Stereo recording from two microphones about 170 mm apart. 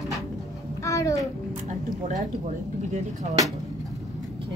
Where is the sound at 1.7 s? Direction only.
45° right (ahead or behind).